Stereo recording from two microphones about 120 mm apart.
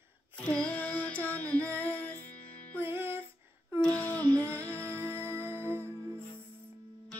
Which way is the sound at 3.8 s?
15° left (ahead or behind).